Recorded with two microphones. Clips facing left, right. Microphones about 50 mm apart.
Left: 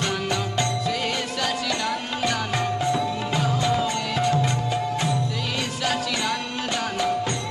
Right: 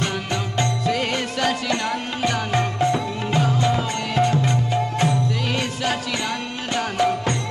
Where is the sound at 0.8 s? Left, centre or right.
Right.